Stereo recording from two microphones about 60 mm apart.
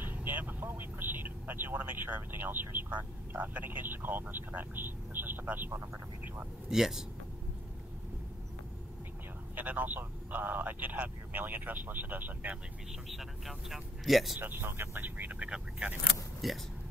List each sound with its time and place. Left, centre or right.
0.0 s speech: right
6.7 s speech: centre
9.6 s speech: right
13.1 s speech: centre
14.4 s speech: right
15.0 s speech: right
16.4 s speech: centre